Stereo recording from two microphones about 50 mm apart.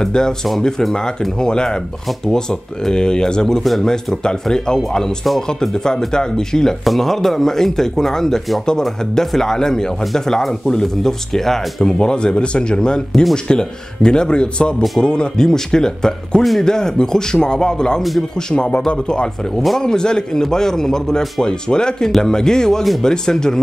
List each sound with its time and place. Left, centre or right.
0.0 s speech: centre
12.0 s speech: centre